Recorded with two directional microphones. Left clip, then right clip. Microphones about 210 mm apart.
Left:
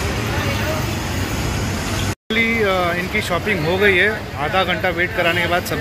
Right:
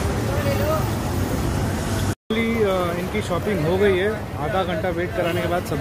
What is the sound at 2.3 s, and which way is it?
Speech, 5° right (ahead or behind).